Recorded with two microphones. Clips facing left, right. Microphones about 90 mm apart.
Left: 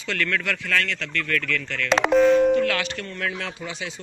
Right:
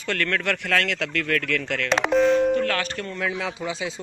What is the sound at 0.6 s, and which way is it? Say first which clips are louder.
Speech: right 2 dB; 65° right (ahead or behind).